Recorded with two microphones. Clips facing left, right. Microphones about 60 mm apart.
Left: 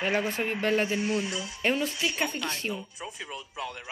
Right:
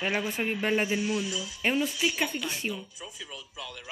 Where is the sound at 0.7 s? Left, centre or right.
Centre.